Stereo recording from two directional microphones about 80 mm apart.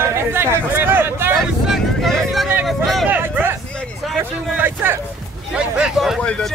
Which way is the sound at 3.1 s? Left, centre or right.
Right.